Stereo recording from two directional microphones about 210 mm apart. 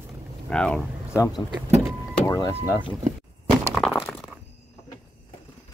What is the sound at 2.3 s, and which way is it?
Speech, 15° left (ahead or behind).